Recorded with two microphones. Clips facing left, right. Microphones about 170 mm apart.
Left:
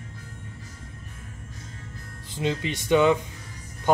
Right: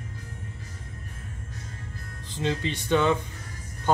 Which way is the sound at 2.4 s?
15° left (ahead or behind).